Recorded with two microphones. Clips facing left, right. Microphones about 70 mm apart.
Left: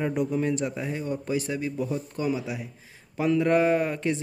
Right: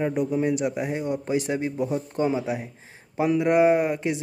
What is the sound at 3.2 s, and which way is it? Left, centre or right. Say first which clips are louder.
Speech: right 2 dB; centre.